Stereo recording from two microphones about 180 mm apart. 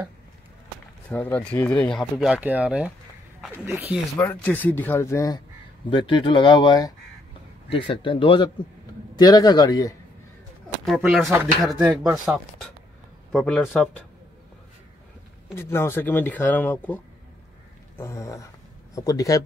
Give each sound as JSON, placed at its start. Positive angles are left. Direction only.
{"t": 1.1, "sound": "speech", "side_deg": 10}
{"t": 4.2, "sound": "speech", "side_deg": 10}
{"t": 10.9, "sound": "speech", "side_deg": 0}
{"t": 15.5, "sound": "speech", "side_deg": 10}